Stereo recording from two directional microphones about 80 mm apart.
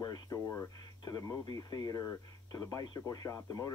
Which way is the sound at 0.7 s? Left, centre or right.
Left.